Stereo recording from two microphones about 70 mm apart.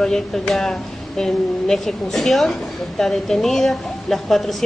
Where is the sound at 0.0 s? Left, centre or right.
Centre.